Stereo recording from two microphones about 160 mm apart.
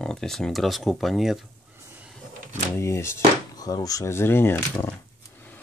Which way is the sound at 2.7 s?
15° left (ahead or behind).